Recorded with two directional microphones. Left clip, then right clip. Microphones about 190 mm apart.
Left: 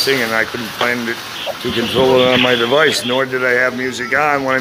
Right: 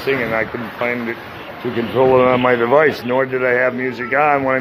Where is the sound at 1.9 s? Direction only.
35° left (ahead or behind).